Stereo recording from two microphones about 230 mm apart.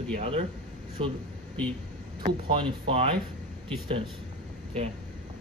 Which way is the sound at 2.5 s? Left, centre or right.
Right.